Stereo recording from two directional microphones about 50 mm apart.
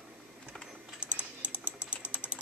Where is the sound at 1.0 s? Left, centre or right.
Right.